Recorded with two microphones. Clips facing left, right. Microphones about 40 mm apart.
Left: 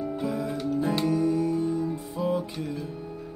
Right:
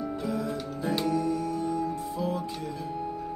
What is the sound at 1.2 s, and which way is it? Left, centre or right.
Music, left.